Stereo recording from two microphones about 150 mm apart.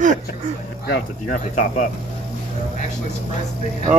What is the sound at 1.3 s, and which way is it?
Speech, 60° left (ahead or behind).